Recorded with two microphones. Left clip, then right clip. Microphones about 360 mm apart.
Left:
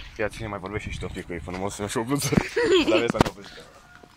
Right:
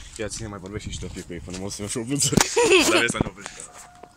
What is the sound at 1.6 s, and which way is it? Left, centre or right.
Speech, left.